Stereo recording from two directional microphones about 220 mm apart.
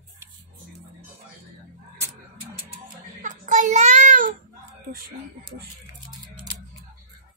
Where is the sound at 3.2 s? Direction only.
35° right (ahead or behind).